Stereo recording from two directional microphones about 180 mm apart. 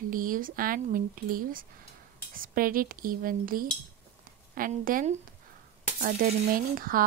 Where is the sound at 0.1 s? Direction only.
50° right (ahead or behind).